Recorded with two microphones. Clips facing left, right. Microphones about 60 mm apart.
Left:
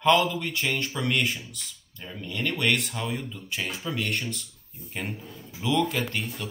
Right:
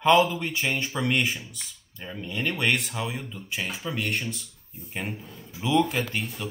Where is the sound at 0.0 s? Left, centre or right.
Centre.